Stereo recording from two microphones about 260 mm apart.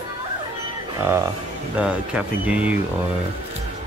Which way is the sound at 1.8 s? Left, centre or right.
Centre.